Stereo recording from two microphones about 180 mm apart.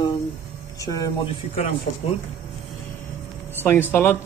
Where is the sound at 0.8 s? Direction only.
20° left (ahead or behind).